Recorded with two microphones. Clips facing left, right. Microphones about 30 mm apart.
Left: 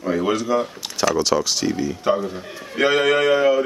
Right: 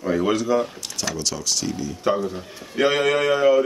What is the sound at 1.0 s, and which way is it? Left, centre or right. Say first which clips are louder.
Speech: left 9 dB; left.